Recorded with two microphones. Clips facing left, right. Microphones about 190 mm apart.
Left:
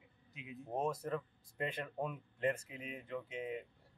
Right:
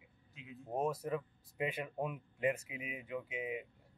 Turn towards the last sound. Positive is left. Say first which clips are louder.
# right 1 dB
turn(degrees=-10)  # may be behind; listen again after turning